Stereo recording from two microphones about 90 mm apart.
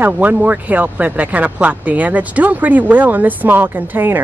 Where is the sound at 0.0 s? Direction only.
20° right (ahead or behind).